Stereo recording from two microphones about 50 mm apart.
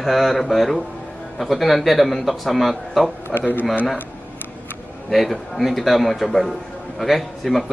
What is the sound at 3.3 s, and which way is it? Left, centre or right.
Speech, left.